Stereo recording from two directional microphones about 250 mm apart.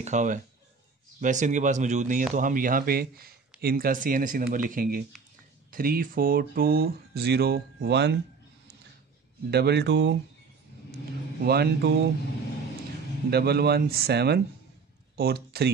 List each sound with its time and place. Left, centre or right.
0.0 s speech: right
9.5 s speech: right
11.4 s speech: right
13.3 s speech: right